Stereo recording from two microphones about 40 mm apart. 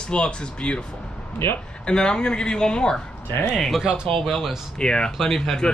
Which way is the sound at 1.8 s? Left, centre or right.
Centre.